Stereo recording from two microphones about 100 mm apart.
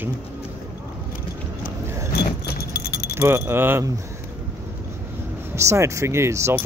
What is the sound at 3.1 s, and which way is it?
Speech, 25° right (ahead or behind).